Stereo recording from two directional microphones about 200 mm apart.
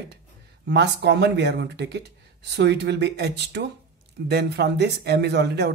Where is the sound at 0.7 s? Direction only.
60° right (ahead or behind).